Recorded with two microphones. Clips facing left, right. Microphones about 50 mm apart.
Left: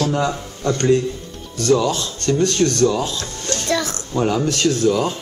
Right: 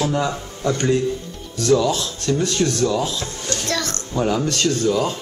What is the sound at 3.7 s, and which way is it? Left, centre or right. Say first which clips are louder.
A child's voice: left 5 dB; centre.